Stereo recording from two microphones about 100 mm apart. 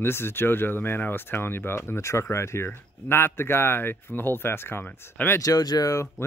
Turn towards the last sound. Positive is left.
turn(degrees=30)  # may be behind; listen again after turning